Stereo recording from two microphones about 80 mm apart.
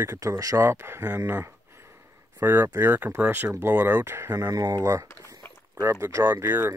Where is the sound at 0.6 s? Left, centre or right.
Right.